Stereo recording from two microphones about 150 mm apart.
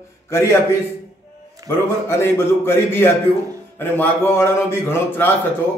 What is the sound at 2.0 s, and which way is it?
A man's voice, 15° left (ahead or behind).